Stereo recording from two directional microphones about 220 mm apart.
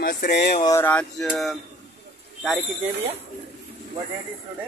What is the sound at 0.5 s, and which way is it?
Speech, 15° left (ahead or behind).